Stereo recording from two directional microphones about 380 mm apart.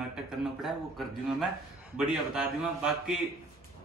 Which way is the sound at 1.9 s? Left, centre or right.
Centre.